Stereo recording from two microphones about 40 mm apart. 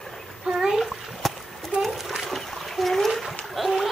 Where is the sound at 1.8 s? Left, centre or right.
Centre.